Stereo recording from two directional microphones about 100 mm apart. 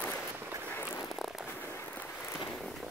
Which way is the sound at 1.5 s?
20° left (ahead or behind).